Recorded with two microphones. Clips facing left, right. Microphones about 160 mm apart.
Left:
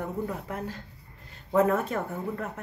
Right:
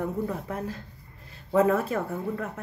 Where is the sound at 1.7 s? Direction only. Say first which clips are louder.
Right 2 dB; 30° right (ahead or behind).